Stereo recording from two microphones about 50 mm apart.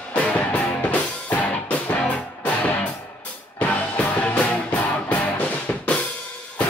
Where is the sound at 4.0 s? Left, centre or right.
Left.